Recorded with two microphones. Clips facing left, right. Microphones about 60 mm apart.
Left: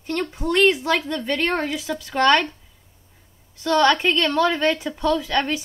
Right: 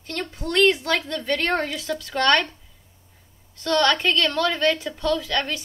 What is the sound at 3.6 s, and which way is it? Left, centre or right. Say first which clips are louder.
A woman's voice: left 3 dB; centre.